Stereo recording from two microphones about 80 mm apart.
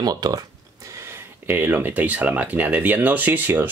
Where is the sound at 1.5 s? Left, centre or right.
Right.